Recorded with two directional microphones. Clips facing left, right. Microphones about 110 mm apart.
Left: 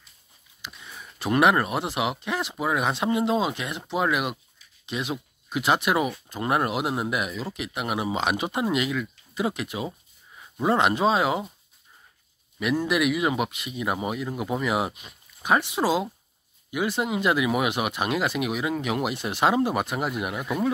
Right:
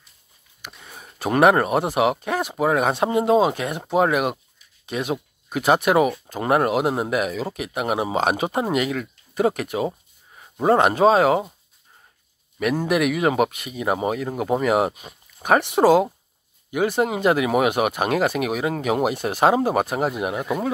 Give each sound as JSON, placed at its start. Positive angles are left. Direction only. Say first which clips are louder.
{"t": 0.6, "sound": "speech", "louder": "right 1 dB", "side_deg": -45}
{"t": 12.5, "sound": "speech", "louder": "right 3 dB", "side_deg": -50}
{"t": 20.2, "sound": "speech", "louder": "right 4 dB", "side_deg": -25}